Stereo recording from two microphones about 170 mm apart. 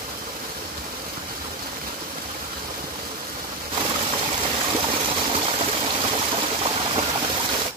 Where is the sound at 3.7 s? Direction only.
30° right (ahead or behind).